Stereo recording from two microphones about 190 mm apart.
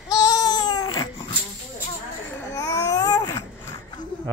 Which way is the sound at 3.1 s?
20° left (ahead or behind).